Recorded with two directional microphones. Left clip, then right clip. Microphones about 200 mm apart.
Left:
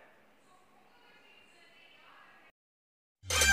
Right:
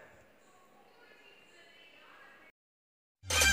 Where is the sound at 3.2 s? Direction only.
Centre (ahead or behind).